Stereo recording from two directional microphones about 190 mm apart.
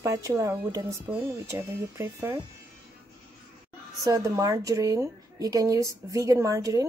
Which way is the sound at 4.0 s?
15° right (ahead or behind).